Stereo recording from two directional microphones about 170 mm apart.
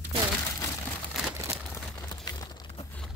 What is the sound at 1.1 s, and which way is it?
Crumpling, centre (ahead or behind).